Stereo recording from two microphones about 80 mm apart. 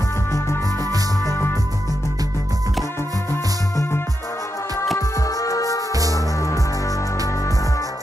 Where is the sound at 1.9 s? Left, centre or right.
Left.